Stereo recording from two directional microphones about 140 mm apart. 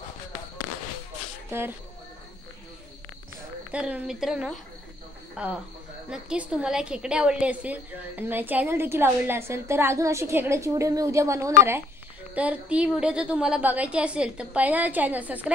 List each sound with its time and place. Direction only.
1.5 s a woman's voice: 15° right (ahead or behind)
3.7 s a woman's voice: 10° right (ahead or behind)
12.4 s a woman's voice: 10° right (ahead or behind)